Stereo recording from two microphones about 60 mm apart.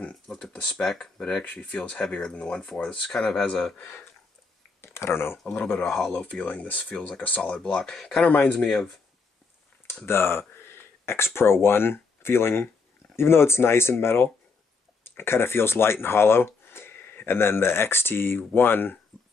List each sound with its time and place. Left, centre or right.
0.3 s speech: centre
1.4 s speech: left
3.8 s speech: left
5.5 s speech: left
7.6 s speech: centre
8.2 s speech: left
10.0 s speech: left